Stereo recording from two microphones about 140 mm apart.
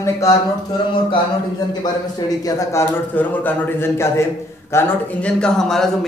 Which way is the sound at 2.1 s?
25° left (ahead or behind).